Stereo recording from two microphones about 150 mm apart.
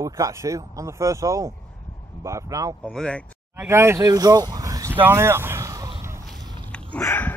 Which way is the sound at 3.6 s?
15° right (ahead or behind).